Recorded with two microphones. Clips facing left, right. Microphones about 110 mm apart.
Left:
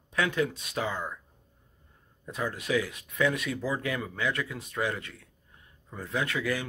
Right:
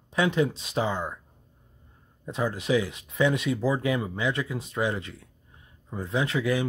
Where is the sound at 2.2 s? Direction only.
25° right (ahead or behind).